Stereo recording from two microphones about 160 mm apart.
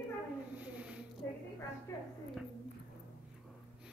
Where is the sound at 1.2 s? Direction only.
15° left (ahead or behind).